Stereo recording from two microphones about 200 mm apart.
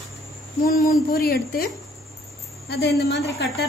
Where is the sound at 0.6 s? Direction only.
45° left (ahead or behind).